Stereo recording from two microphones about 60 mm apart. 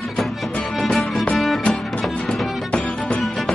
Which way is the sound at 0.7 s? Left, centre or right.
Centre.